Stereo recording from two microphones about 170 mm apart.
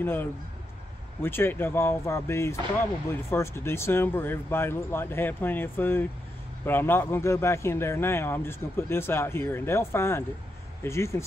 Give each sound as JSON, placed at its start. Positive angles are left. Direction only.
{"t": 0.0, "sound": "a man's voice", "side_deg": 10}